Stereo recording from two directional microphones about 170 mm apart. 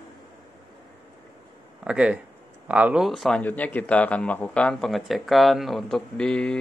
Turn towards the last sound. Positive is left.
turn(degrees=5)  # may be behind; listen again after turning